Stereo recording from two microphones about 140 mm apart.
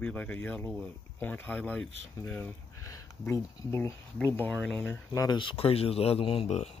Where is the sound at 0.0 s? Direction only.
10° left (ahead or behind).